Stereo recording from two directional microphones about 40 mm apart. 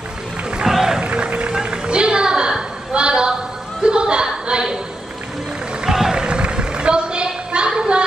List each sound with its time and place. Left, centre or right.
0.7 s music: centre
1.0 s music: right
3.8 s chuckle: right
5.9 s a sound: centre